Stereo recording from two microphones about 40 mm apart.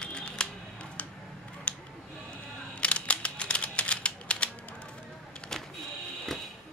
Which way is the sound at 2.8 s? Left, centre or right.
Left.